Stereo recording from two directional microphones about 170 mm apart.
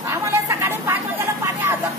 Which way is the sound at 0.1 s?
15° right (ahead or behind).